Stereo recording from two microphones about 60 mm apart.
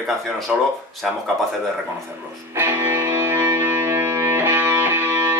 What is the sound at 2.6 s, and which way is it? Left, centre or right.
Music, right.